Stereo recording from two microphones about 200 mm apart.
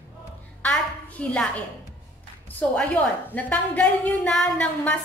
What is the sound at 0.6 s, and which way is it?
A woman's voice, 5° left (ahead or behind).